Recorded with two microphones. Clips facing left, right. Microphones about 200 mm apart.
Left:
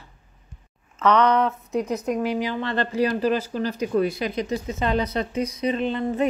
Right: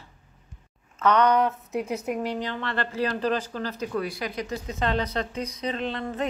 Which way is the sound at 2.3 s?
10° left (ahead or behind).